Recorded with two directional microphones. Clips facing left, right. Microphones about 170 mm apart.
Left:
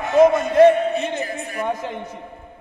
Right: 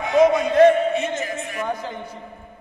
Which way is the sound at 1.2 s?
35° left (ahead or behind).